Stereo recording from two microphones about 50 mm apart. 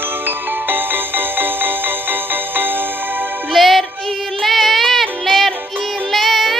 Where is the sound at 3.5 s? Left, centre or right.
Centre.